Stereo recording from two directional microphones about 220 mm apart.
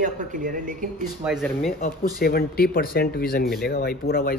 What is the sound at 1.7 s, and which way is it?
Speech, 40° left (ahead or behind).